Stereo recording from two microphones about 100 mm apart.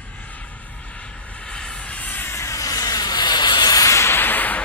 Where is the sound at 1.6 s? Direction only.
15° left (ahead or behind).